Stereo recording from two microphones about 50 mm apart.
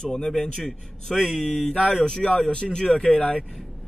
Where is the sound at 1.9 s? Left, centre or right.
Centre.